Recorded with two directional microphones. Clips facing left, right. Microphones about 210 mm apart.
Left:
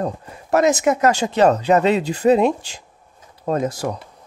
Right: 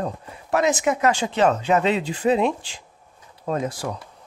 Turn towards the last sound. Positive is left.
turn(degrees=40)  # may be behind; listen again after turning